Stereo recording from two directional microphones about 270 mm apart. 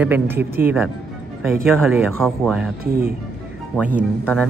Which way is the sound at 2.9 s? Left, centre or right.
Right.